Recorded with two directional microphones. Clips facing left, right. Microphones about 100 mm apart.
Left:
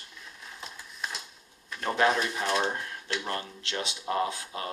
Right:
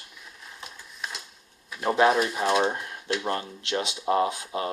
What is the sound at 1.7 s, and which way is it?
Speech, 15° right (ahead or behind).